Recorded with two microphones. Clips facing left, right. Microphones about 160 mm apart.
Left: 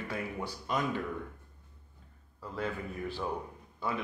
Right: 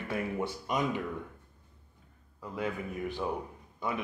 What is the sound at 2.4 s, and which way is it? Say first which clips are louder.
Speech: right 1 dB; 15° right (ahead or behind).